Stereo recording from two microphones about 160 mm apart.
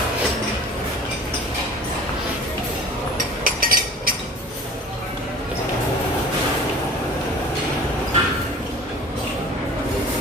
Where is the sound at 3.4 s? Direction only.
60° right (ahead or behind).